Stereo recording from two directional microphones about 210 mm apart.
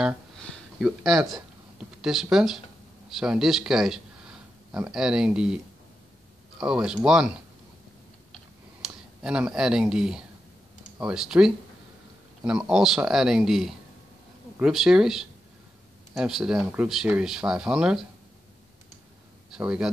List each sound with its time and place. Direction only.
0.0 s a sound: centre (ahead or behind)
2.3 s speech: centre (ahead or behind)
6.6 s speech: 5° right (ahead or behind)
8.8 s speech: 5° right (ahead or behind)
19.5 s speech: 5° right (ahead or behind)